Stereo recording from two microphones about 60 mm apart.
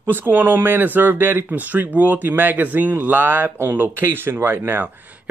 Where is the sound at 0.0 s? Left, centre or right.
Right.